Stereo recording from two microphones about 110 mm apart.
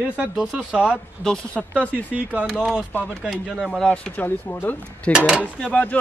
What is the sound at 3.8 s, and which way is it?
Speech, 10° left (ahead or behind).